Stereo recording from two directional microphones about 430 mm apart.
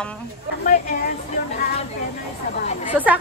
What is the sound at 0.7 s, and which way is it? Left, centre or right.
Speech, centre.